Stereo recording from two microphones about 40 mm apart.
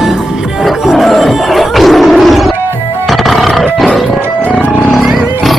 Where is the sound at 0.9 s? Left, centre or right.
Centre.